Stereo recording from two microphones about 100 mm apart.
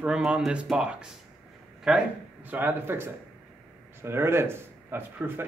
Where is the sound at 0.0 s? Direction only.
10° right (ahead or behind).